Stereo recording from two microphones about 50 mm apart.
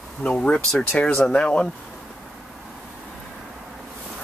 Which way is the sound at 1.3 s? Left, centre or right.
Centre.